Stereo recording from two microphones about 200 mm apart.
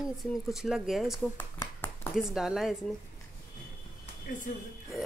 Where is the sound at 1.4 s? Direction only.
10° left (ahead or behind).